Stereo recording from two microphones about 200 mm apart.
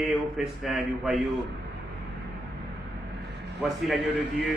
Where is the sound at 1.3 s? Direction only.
60° right (ahead or behind).